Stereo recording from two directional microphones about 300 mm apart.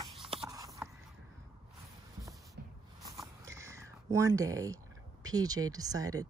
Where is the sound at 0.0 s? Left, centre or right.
Centre.